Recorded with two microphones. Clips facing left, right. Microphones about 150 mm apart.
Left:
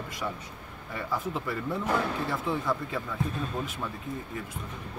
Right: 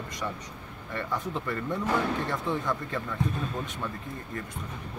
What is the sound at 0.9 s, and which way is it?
Speech, 5° left (ahead or behind).